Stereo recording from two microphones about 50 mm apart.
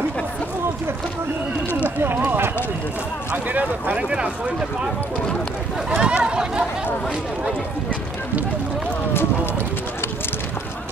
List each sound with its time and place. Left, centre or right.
2.0 s run: right
3.4 s speech: right
3.9 s speech: right
5.9 s a sound: right